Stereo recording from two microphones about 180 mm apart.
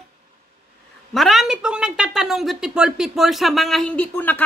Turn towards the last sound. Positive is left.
turn(degrees=10)  # may be behind; listen again after turning